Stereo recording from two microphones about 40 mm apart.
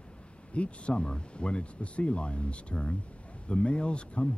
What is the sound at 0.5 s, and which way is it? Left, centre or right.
Speech, left.